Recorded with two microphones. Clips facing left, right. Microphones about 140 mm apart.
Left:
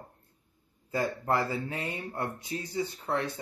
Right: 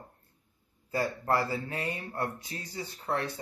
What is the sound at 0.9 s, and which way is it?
Speech, 20° left (ahead or behind).